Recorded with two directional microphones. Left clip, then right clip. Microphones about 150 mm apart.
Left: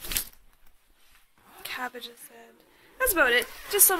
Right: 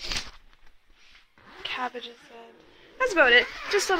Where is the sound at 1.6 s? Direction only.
10° left (ahead or behind).